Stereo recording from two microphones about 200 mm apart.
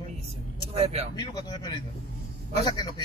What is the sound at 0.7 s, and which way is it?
Speech, 30° right (ahead or behind).